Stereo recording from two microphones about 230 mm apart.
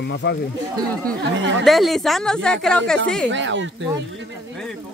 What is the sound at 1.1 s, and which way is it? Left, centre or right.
Speech, right.